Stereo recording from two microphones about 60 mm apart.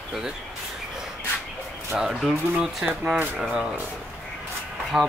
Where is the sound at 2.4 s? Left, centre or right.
Centre.